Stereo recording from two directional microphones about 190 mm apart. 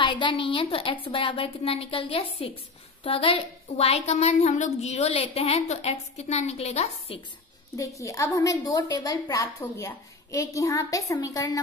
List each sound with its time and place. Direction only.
0.0 s a woman's voice: 25° left (ahead or behind)
7.7 s a woman's voice: 15° left (ahead or behind)